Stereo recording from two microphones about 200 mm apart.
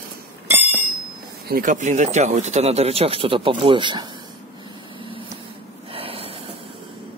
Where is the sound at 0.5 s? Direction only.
10° right (ahead or behind).